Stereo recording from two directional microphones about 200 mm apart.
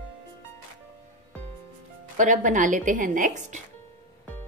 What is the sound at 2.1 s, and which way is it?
A woman's voice, 40° right (ahead or behind).